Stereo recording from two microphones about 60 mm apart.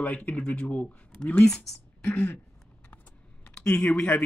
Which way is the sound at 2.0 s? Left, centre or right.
Centre.